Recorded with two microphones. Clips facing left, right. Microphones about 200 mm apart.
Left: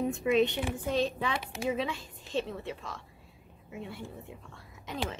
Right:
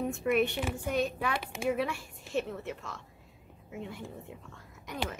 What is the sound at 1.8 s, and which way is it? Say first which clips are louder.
A woman's voice: right 1 dB; 20° left (ahead or behind).